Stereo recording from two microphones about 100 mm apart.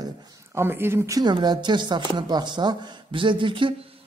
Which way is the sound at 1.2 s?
45° right (ahead or behind).